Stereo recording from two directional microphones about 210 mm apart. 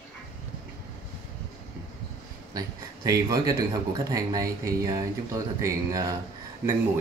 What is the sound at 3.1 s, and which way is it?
Speech, 15° right (ahead or behind).